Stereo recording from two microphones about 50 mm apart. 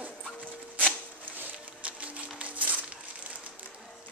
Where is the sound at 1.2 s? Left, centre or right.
Right.